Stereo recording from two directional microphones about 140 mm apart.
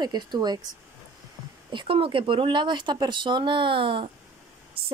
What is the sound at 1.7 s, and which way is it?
A woman's voice, 40° right (ahead or behind).